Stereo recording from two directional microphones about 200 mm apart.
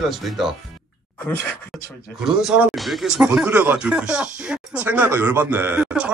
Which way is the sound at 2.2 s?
5° right (ahead or behind).